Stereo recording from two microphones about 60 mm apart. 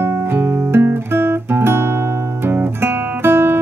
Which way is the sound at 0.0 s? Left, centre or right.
Right.